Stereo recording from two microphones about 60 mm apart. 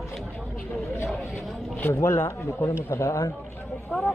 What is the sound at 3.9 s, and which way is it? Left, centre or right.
Speech, left.